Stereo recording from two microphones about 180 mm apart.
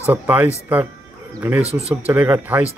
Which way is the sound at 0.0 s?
10° right (ahead or behind).